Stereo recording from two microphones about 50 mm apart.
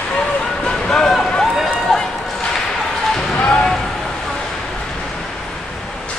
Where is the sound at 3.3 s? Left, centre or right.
Left.